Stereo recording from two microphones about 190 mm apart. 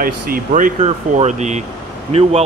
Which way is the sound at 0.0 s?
45° right (ahead or behind).